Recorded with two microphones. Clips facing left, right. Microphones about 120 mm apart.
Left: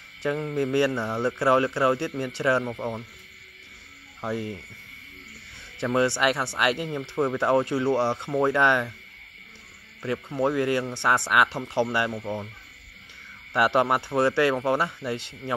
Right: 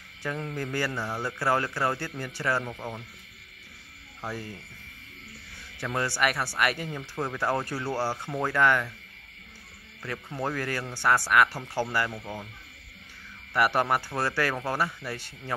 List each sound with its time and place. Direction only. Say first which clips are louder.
0.2 s speech: left 7 dB; 15° left (ahead or behind)
4.2 s speech: left 6 dB; 25° left (ahead or behind)
5.8 s speech: left 5 dB; 20° left (ahead or behind)
10.0 s speech: left 7 dB; 20° left (ahead or behind)
13.5 s speech: left 3 dB; 20° left (ahead or behind)